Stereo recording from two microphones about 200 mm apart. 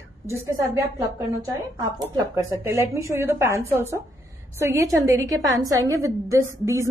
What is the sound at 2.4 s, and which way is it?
A woman's voice, 15° right (ahead or behind).